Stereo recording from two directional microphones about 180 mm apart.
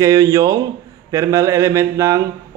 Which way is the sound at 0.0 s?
20° right (ahead or behind).